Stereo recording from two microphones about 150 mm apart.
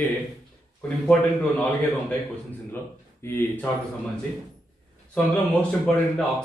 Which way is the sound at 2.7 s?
15° left (ahead or behind).